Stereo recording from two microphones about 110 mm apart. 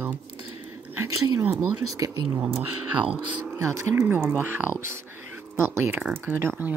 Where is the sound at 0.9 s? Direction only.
30° right (ahead or behind).